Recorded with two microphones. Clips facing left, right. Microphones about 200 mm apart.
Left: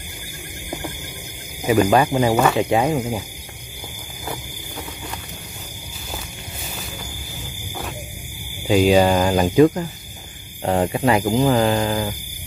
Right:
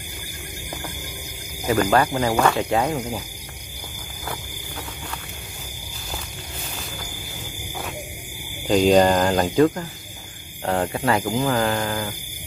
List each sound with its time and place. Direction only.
1.7 s speech: 10° left (ahead or behind)
3.0 s speech: 25° left (ahead or behind)
8.6 s speech: 5° left (ahead or behind); by 12.2 s 25° left (ahead or behind)